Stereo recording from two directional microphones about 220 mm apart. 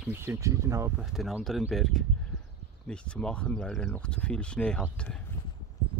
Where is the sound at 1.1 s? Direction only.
Centre (ahead or behind).